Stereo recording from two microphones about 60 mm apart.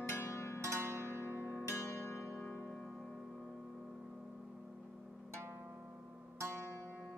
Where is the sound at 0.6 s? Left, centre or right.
Right.